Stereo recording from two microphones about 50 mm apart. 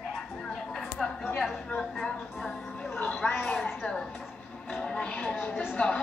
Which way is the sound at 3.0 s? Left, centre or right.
Left.